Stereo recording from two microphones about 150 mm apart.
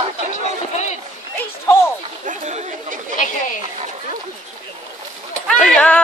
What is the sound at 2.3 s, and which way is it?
Chatter, 50° right (ahead or behind).